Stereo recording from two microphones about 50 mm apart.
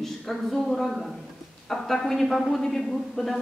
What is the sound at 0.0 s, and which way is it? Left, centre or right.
A woman's voice, centre.